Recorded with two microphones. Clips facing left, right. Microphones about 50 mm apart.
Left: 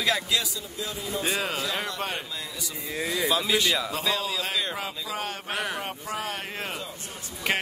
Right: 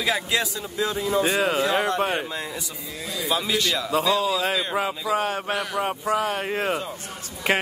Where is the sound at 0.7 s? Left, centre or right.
Right.